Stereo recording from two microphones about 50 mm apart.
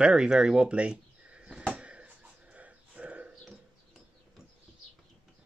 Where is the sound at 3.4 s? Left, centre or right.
Centre.